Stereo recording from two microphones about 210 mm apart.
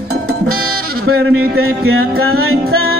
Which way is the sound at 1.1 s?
85° right.